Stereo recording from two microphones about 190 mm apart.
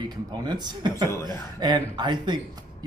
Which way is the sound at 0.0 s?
20° right (ahead or behind).